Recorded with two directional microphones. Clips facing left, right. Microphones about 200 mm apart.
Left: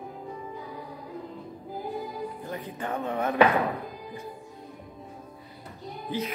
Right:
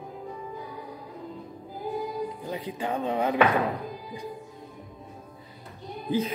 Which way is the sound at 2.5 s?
10° right (ahead or behind).